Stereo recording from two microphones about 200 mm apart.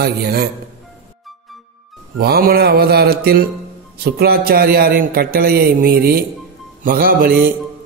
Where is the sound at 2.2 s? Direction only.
50° right (ahead or behind).